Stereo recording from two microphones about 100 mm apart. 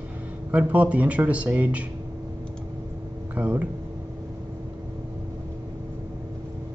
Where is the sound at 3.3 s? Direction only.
15° right (ahead or behind).